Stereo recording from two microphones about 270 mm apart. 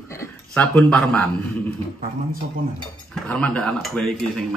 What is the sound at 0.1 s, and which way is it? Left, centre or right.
Speech, centre.